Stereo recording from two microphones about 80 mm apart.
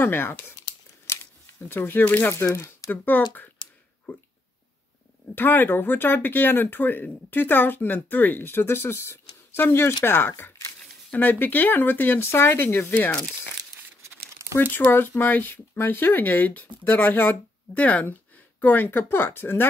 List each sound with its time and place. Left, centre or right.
0.0 s speech: left
1.0 s a sound: left
2.3 s speech: left
3.1 s speech: left
3.6 s a sound: left
5.3 s speech: left
12.9 s speech: centre
14.6 s speech: left